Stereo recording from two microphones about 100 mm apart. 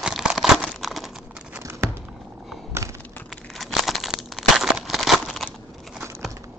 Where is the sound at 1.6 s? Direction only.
25° right (ahead or behind).